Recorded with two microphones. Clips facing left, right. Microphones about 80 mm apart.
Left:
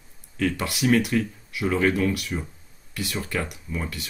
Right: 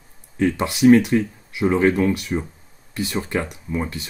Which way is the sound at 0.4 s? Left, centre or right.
Right.